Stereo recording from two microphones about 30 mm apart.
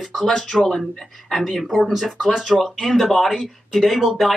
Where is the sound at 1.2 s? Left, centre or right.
Centre.